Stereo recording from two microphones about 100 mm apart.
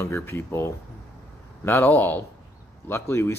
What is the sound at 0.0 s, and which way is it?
A man's voice, 25° left (ahead or behind).